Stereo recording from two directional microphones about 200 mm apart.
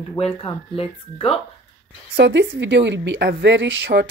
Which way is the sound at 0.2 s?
25° left (ahead or behind).